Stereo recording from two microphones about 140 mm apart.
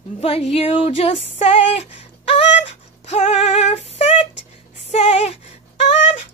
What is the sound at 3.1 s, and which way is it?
Music, 50° left (ahead or behind).